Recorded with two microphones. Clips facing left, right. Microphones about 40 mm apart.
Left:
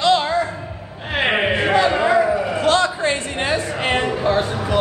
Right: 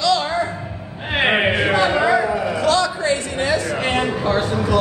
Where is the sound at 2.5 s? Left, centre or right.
Left.